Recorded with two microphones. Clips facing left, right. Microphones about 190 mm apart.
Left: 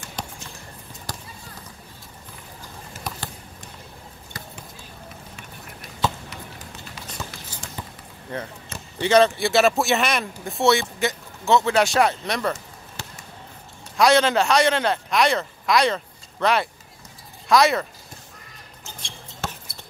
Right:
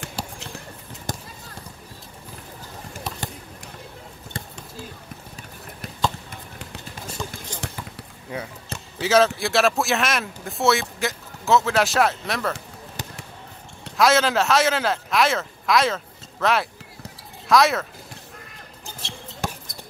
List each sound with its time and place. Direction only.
1.1 s clip-clop: 20° right (ahead or behind)
4.3 s basketball bounce: 25° right (ahead or behind)
6.3 s run: 50° right (ahead or behind)
7.6 s basketball bounce: 65° right (ahead or behind)
8.3 s speech: 10° right (ahead or behind)
13.9 s a man's voice: centre (ahead or behind)